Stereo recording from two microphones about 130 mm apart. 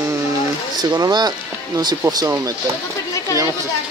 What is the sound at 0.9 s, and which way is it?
Speech, 30° right (ahead or behind).